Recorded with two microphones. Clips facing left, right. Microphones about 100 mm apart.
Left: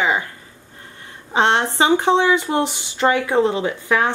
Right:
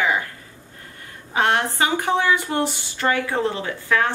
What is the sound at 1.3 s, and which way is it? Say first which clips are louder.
Speech: left 3 dB; 25° left (ahead or behind).